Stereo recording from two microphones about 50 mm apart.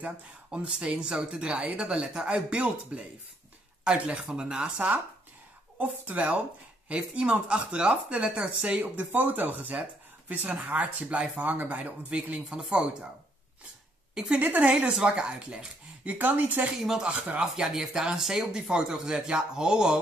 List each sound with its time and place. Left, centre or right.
0.5 s speech: right
5.8 s speech: right
14.4 s speech: right
14.8 s speech: centre
16.1 s speech: right
17.4 s speech: centre